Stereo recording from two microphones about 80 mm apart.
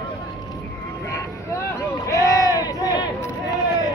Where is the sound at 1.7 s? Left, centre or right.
Left.